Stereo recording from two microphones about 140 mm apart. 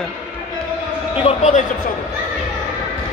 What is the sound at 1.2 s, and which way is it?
Speech, 55° left (ahead or behind).